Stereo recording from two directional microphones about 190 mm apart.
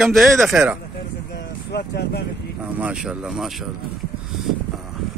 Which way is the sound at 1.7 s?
60° left (ahead or behind).